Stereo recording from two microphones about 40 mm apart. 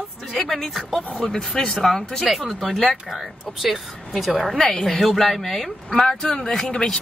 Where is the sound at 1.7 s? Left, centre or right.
Centre.